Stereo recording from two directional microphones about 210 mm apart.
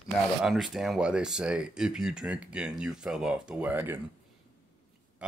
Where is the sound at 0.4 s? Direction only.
Centre (ahead or behind).